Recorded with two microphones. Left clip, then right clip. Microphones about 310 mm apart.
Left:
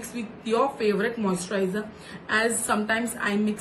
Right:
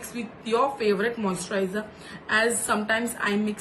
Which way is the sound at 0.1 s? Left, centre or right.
Centre.